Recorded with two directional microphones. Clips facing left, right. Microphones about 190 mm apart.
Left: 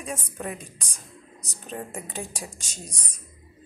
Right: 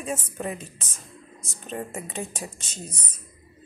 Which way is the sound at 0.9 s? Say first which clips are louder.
Right 1 dB; 15° left (ahead or behind).